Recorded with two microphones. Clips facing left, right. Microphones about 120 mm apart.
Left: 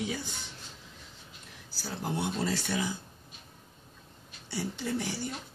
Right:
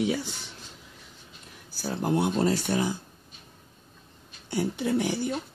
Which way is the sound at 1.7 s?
55° right (ahead or behind).